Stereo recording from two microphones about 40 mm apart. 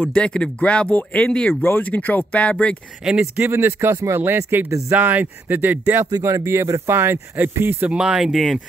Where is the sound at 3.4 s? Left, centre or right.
Right.